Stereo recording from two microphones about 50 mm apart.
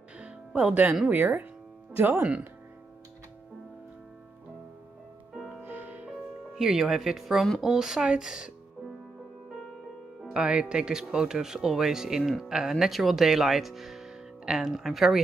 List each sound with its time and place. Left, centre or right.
0.2 s music: right
1.1 s speech: right
2.1 s speech: right
5.6 s music: right
6.6 s speech: centre
10.3 s speech: right; by 15.2 s centre